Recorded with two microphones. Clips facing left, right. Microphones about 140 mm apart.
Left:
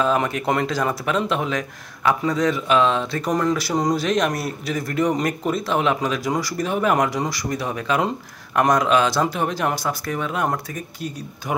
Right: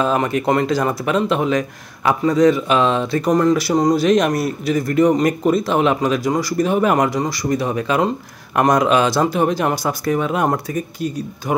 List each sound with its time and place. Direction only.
0.0 s speech: centre (ahead or behind)
9.8 s speech: 15° right (ahead or behind)